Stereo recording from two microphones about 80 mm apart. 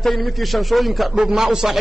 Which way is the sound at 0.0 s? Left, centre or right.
Centre.